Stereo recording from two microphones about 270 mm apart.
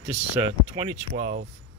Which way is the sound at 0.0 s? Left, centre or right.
Centre.